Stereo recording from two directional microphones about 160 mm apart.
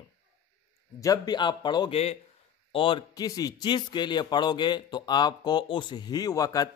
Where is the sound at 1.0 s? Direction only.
25° left (ahead or behind).